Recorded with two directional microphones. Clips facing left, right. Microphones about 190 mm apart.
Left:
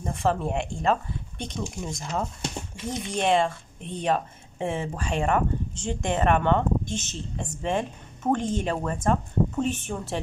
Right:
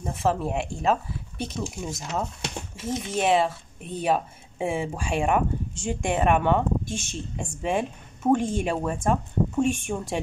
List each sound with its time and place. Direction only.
0.0 s speech: 5° right (ahead or behind)